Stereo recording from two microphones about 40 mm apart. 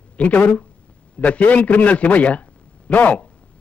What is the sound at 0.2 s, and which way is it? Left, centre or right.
A man's voice, left.